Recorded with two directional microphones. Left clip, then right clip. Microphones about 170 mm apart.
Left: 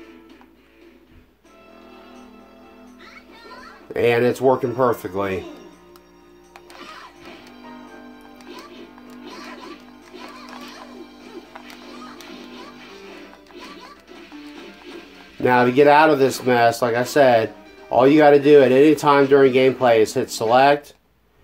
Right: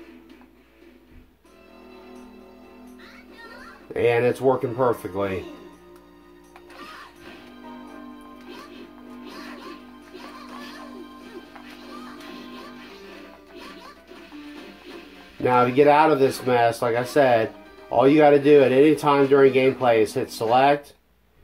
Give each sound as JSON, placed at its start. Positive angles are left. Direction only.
{"t": 3.9, "sound": "speech", "side_deg": 40}
{"t": 15.4, "sound": "speech", "side_deg": 40}